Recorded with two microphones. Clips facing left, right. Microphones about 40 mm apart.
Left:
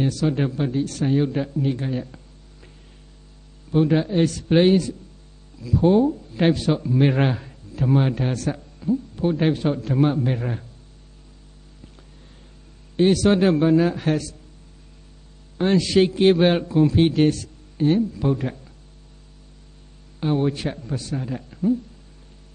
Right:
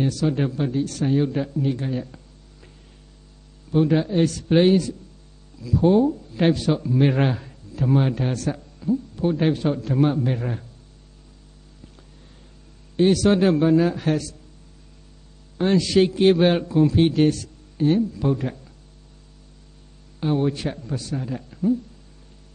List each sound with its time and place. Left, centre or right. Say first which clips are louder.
0.0 s a man's voice: even; left
1.6 s a sound: even; left
3.7 s a man's voice: even; left
12.9 s a man's voice: even; left
15.5 s a man's voice: even; left
20.2 s a man's voice: even; left